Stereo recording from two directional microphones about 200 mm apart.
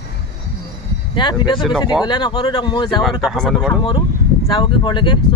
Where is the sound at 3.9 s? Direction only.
20° left (ahead or behind).